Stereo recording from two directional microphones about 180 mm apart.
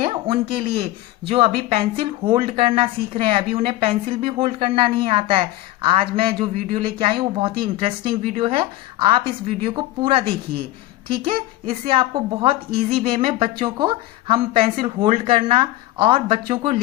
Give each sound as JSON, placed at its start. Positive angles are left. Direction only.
{"t": 0.0, "sound": "speech", "side_deg": -30}
{"t": 11.9, "sound": "speech", "side_deg": -30}